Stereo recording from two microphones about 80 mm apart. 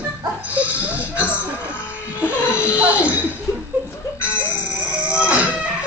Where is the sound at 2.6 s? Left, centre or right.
Centre.